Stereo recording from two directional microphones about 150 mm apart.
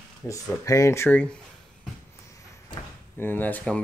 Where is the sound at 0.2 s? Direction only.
15° left (ahead or behind).